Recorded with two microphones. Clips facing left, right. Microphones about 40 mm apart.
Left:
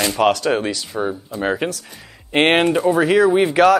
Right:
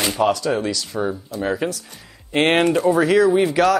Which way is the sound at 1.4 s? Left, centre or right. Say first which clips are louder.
Left 2 dB; left.